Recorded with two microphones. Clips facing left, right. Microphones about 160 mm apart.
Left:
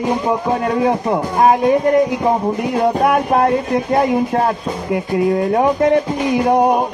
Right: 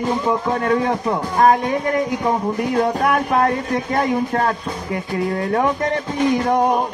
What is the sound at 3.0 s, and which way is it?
Music, 25° left (ahead or behind).